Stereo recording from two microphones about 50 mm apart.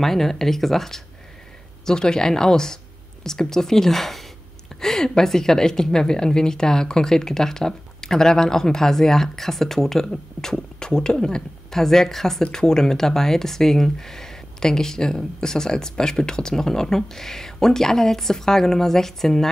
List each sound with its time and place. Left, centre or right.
0.0 s a woman's voice: centre